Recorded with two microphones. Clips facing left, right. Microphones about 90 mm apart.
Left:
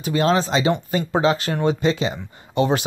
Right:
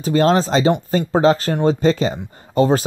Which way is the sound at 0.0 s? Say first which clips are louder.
Right 4 dB; 40° right (ahead or behind).